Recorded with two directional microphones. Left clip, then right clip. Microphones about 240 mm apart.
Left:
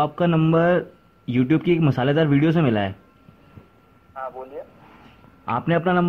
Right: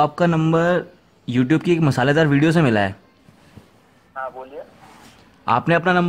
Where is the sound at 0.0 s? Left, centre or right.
Right.